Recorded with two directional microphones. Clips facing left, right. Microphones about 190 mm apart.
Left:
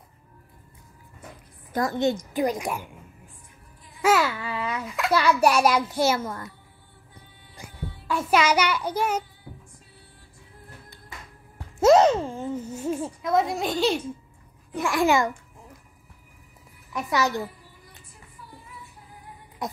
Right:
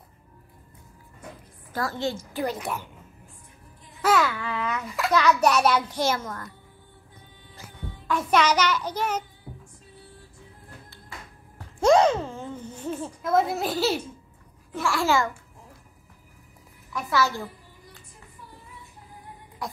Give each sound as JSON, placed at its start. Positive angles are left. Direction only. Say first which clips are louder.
{"t": 1.7, "sound": "a woman's voice", "louder": "left 5 dB", "side_deg": 20}
{"t": 4.0, "sound": "babbling", "louder": "left 1 dB", "side_deg": 10}
{"t": 4.8, "sound": "a woman's voice", "louder": "even", "side_deg": 0}
{"t": 7.5, "sound": "music", "louder": "left 3 dB", "side_deg": 10}
{"t": 8.3, "sound": "a woman's voice", "louder": "left 1 dB", "side_deg": 10}
{"t": 11.5, "sound": "babbling", "louder": "left 2 dB", "side_deg": 5}
{"t": 13.2, "sound": "a woman's voice", "louder": "right 1 dB", "side_deg": 0}
{"t": 14.7, "sound": "a woman's voice", "louder": "left 2 dB", "side_deg": 15}
{"t": 16.9, "sound": "a child's voice", "louder": "left 1 dB", "side_deg": 20}
{"t": 19.6, "sound": "music", "louder": "left 3 dB", "side_deg": 20}